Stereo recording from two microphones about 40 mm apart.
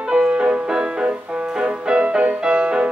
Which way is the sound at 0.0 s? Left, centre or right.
Right.